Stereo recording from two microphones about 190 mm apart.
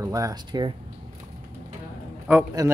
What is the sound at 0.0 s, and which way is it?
Speech, 20° right (ahead or behind).